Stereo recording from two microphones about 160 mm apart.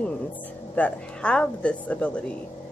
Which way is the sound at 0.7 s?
10° left (ahead or behind).